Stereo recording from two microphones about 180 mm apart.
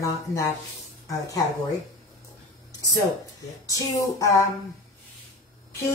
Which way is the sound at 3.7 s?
20° left (ahead or behind).